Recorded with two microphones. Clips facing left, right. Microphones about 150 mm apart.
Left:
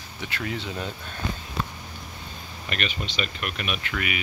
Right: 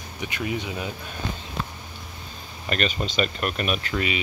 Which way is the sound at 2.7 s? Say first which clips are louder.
Right 5 dB; 40° right (ahead or behind).